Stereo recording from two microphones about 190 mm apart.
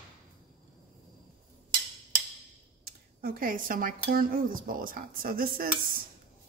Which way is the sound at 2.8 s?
50° right (ahead or behind).